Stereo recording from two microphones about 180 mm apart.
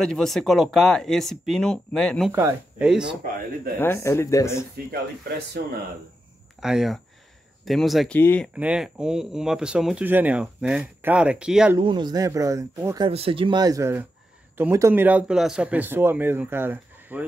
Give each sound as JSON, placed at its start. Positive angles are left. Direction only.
{"t": 0.0, "sound": "speech", "side_deg": 0}
{"t": 2.3, "sound": "speech", "side_deg": -10}
{"t": 3.8, "sound": "speech", "side_deg": 15}
{"t": 5.5, "sound": "speech", "side_deg": -60}
{"t": 6.6, "sound": "speech", "side_deg": 0}
{"t": 8.2, "sound": "speech", "side_deg": 10}
{"t": 8.5, "sound": "speech", "side_deg": -5}
{"t": 11.8, "sound": "speech", "side_deg": -25}